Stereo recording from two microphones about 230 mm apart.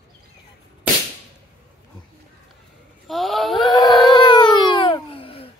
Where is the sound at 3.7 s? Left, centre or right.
Centre.